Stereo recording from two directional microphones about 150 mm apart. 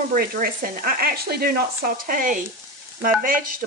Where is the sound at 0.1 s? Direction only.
70° right (ahead or behind).